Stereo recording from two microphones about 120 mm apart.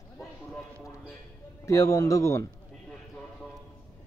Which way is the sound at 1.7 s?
25° left (ahead or behind).